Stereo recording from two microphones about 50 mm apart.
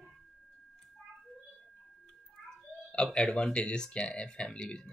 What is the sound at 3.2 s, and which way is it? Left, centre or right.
Speech, centre.